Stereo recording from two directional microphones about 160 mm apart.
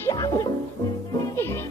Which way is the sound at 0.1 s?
25° left (ahead or behind).